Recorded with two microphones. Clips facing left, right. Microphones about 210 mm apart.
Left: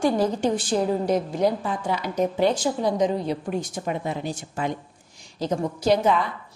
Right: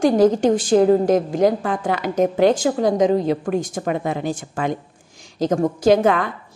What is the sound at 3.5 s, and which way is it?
Speech, 55° right (ahead or behind).